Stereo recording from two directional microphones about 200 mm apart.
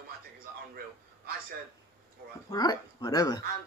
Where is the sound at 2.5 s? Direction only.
20° left (ahead or behind).